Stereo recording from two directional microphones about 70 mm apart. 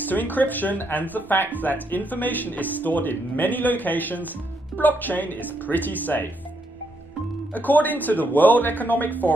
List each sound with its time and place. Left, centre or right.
0.0 s speech: left
7.5 s speech: left